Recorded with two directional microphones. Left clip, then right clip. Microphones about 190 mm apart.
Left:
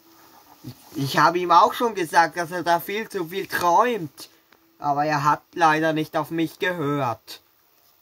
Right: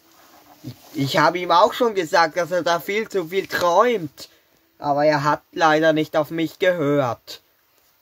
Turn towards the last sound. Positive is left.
turn(degrees=-35)  # may be behind; listen again after turning